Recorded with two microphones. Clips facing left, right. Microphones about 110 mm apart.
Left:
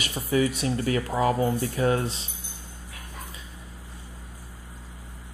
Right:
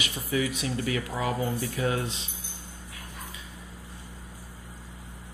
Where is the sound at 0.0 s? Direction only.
35° left (ahead or behind).